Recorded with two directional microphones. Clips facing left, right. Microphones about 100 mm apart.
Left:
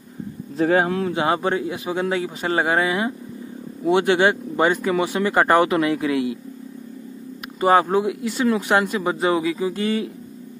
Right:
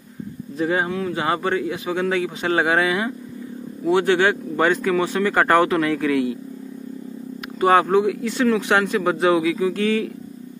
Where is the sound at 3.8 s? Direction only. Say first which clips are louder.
Even; 20° left (ahead or behind).